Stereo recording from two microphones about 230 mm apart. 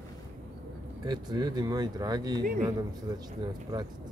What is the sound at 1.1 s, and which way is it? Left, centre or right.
Speech, centre.